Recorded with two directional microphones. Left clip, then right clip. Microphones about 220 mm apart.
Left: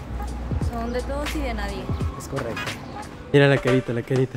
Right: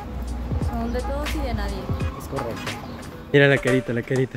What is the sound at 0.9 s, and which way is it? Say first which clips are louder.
Speech: left 1 dB; centre (ahead or behind).